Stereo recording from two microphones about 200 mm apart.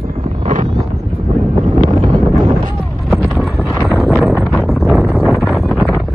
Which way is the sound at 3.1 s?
Centre (ahead or behind).